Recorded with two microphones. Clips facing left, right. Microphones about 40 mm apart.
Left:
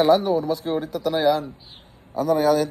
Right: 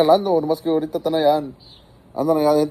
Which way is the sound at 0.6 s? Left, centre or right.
Left.